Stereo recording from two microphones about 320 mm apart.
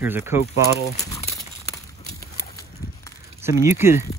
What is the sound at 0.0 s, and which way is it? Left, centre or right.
Speech, centre.